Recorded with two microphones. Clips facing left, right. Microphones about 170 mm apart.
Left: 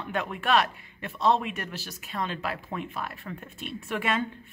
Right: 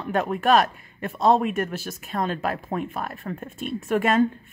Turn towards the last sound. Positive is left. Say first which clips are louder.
# right 9 dB
turn(degrees=-45)  # may be behind; listen again after turning